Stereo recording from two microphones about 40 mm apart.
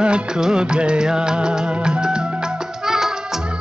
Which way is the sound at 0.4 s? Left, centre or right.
Right.